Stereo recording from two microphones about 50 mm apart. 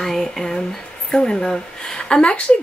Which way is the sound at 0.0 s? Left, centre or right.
Centre.